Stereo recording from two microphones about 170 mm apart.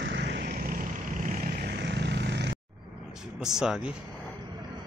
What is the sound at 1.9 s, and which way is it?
Vehicle, 90° right.